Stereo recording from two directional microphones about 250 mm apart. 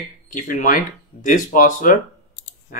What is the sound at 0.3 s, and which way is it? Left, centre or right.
Speech, left.